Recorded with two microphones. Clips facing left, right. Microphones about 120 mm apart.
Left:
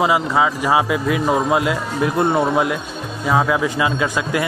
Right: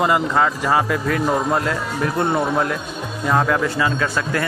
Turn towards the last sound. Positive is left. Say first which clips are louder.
# left 2 dB
turn(degrees=10)  # may be behind; listen again after turning